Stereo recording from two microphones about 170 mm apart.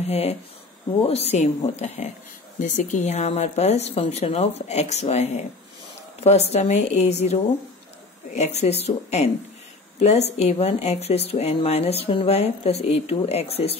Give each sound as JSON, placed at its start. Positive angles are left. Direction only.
{"t": 0.0, "sound": "speech", "side_deg": 40}